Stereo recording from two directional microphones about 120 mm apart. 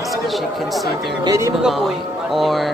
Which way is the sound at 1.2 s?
30° right (ahead or behind).